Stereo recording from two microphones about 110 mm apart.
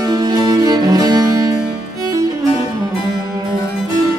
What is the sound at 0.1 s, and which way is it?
Music, 40° right (ahead or behind).